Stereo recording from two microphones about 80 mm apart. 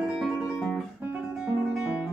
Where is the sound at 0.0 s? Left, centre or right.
Centre.